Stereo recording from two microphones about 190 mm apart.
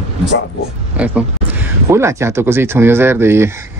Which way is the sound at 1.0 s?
5° right (ahead or behind).